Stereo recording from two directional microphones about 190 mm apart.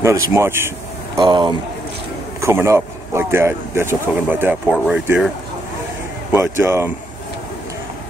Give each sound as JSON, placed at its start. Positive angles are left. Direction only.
{"t": 0.0, "sound": "speech", "side_deg": -15}
{"t": 1.2, "sound": "speech", "side_deg": -25}
{"t": 6.3, "sound": "speech", "side_deg": -10}